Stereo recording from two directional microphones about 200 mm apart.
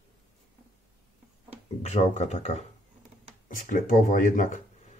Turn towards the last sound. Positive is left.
turn(degrees=40)  # may be behind; listen again after turning